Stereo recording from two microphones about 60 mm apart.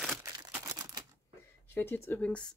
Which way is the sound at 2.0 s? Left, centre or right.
Left.